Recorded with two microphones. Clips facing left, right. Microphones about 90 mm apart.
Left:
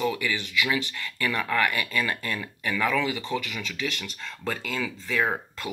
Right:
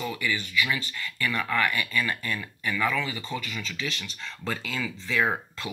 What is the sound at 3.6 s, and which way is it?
Speech, 60° left (ahead or behind).